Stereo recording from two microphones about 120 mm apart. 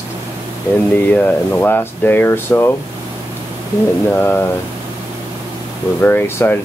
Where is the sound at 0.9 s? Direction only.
15° left (ahead or behind).